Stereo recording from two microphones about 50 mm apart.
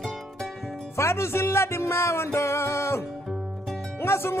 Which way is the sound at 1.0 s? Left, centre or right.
Left.